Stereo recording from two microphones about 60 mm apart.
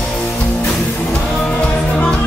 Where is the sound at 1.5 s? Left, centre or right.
Centre.